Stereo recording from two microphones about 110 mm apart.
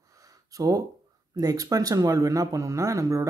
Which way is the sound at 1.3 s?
35° right (ahead or behind).